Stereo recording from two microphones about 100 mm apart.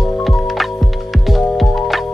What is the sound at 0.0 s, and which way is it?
Music, centre (ahead or behind).